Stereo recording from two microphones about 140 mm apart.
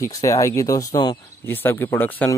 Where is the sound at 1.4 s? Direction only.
15° left (ahead or behind).